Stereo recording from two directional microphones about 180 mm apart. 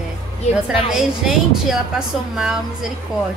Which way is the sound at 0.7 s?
5° right (ahead or behind).